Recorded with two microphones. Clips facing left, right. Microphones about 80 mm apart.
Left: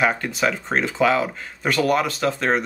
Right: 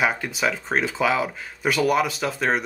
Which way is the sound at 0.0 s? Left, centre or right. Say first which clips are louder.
Left 2 dB; centre.